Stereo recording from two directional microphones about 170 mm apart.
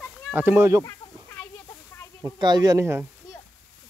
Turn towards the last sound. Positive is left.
turn(degrees=-15)  # may be behind; listen again after turning